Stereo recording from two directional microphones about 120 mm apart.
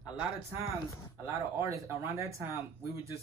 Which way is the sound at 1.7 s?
25° right (ahead or behind).